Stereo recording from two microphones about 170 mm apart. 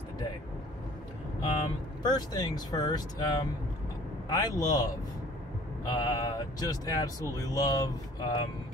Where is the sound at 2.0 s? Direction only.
25° left (ahead or behind).